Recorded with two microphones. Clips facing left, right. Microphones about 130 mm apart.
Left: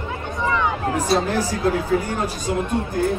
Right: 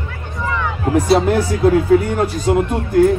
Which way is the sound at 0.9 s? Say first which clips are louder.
Right 9 dB; 60° right (ahead or behind).